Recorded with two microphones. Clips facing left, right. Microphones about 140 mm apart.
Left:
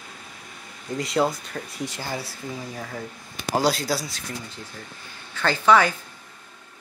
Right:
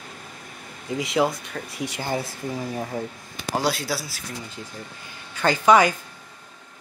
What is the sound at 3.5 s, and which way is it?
Speech, centre (ahead or behind).